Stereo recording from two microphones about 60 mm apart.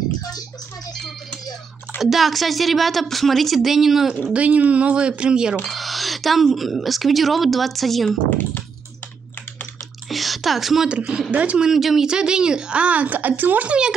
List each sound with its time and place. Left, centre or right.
2.0 s speech: centre
4.3 s speech: right
5.7 s speech: centre
10.0 s a sound: centre
10.9 s speech: centre
11.6 s speech: centre; by 13.7 s right